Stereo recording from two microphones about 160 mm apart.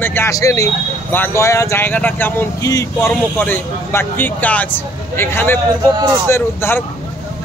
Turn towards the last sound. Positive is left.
turn(degrees=15)  # may be behind; listen again after turning